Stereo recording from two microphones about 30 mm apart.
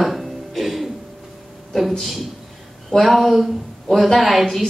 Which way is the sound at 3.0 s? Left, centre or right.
Centre.